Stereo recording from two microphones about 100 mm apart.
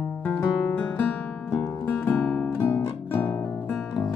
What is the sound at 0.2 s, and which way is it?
Music, 15° left (ahead or behind).